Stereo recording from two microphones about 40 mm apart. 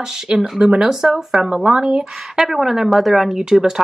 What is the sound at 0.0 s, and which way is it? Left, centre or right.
Speech, centre.